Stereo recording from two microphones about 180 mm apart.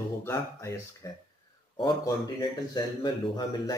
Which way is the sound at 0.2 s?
15° left (ahead or behind).